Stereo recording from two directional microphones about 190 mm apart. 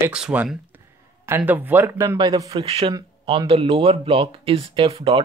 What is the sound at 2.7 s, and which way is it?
Speech, 30° right (ahead or behind).